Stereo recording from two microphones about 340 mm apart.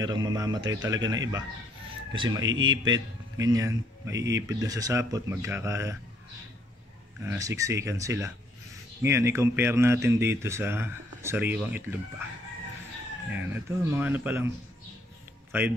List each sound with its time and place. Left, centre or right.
0.0 s speech: centre
2.4 s speech: right
2.7 s speech: centre
4.2 s speech: right
4.5 s speech: centre
7.2 s speech: centre
13.3 s speech: centre
15.5 s speech: centre